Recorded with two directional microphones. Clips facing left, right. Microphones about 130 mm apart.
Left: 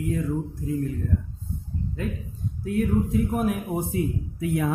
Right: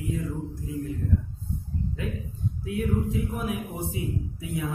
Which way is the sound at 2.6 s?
45° left (ahead or behind).